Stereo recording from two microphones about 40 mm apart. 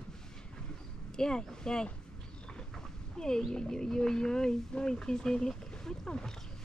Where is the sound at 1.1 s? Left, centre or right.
Centre.